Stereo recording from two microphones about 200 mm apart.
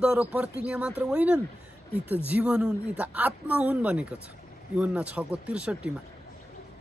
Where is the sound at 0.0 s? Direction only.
5° right (ahead or behind).